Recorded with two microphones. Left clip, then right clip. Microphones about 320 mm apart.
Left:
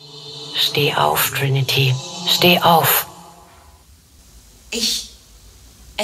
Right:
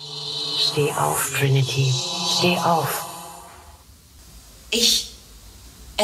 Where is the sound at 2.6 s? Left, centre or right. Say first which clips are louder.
Left 7 dB; left.